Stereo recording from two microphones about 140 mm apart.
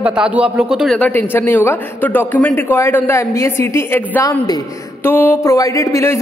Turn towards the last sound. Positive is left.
turn(degrees=20)  # may be behind; listen again after turning